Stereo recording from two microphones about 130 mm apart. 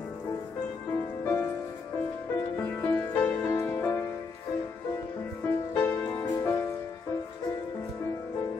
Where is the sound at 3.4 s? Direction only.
20° left (ahead or behind).